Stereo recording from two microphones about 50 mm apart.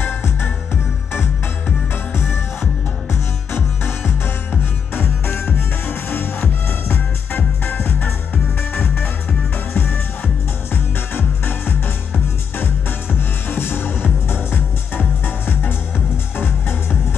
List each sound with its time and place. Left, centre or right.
2.1 s music: left
3.5 s music: left
13.5 s music: left